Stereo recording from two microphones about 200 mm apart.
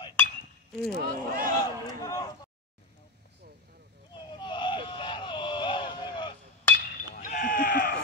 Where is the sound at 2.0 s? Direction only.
20° left (ahead or behind).